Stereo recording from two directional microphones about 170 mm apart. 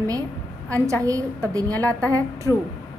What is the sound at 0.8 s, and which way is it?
A woman's voice, 20° right (ahead or behind).